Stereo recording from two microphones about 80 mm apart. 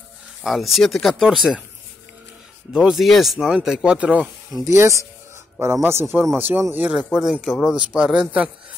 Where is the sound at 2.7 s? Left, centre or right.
Centre.